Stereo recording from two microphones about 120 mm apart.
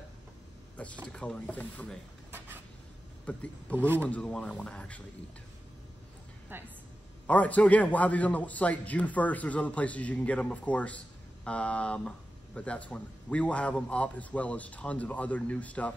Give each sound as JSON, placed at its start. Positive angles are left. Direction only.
{"t": 1.0, "sound": "a man's voice", "side_deg": 10}
{"t": 3.3, "sound": "a man's voice", "side_deg": 10}
{"t": 3.7, "sound": "speech", "side_deg": -15}
{"t": 4.1, "sound": "a man's voice", "side_deg": 5}
{"t": 6.5, "sound": "speech", "side_deg": -20}
{"t": 7.2, "sound": "a man's voice", "side_deg": 10}